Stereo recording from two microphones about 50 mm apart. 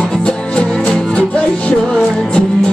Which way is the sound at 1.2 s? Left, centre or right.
Left.